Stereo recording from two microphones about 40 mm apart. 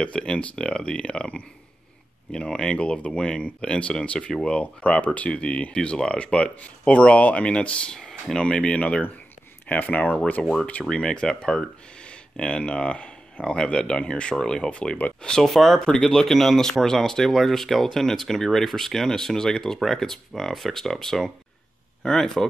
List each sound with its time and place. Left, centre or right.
0.0 s speech: left
4.6 s speech: left
7.9 s speech: centre
8.4 s speech: left
9.7 s speech: left
10.4 s speech: centre
15.4 s speech: centre
15.8 s speech: centre